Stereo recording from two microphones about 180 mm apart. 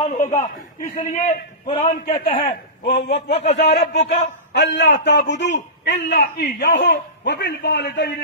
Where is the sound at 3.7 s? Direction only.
75° left (ahead or behind).